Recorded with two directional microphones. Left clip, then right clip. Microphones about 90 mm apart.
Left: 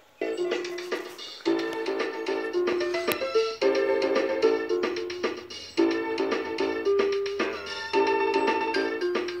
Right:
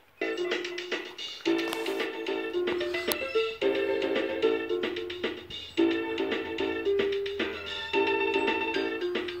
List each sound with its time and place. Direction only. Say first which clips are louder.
1.9 s music: left 3 dB; 45° right (ahead or behind)
2.3 s music: left 4 dB; 35° right (ahead or behind)
2.8 s music: left 3 dB; 20° right (ahead or behind)
3.6 s music: left 4 dB; 30° right (ahead or behind)